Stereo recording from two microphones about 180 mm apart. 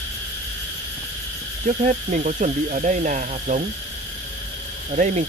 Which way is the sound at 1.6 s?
45° right (ahead or behind).